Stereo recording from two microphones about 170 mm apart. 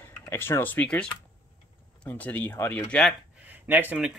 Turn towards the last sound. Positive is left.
turn(degrees=-10)  # may be behind; listen again after turning